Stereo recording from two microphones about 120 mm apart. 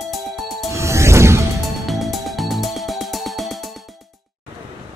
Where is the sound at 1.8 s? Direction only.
Centre (ahead or behind).